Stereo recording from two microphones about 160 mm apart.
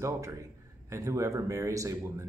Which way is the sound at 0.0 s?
20° right (ahead or behind).